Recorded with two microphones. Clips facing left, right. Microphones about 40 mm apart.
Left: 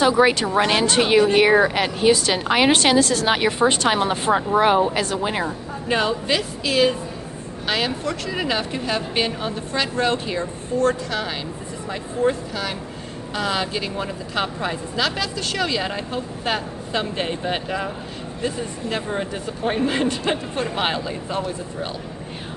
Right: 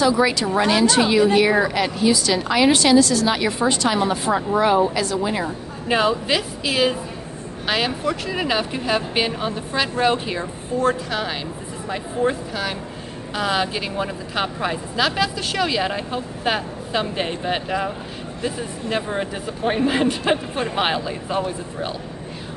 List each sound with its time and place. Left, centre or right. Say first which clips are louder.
0.0 s a woman's voice: left 1 dB; left
5.9 s speech: right 2 dB; centre